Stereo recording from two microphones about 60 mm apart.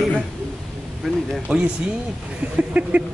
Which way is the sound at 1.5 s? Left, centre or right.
Right.